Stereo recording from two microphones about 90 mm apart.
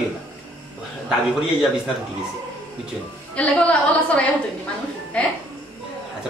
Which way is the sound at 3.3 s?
15° left (ahead or behind).